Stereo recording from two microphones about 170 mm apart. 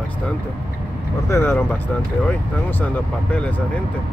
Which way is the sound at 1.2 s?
15° left (ahead or behind).